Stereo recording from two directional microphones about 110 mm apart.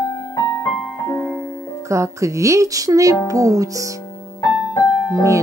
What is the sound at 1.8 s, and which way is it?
Speech, 25° right (ahead or behind).